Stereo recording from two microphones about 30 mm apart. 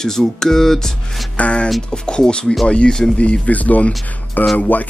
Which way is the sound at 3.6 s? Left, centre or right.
Left.